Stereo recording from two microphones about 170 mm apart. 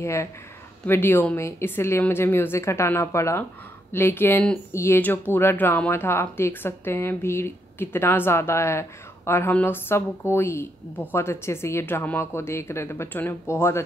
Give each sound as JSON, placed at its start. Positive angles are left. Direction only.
{"t": 0.0, "sound": "speech", "side_deg": 15}